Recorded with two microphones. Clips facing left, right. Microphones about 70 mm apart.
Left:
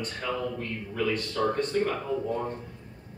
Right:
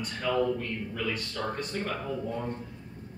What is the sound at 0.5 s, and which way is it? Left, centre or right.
Speech, centre.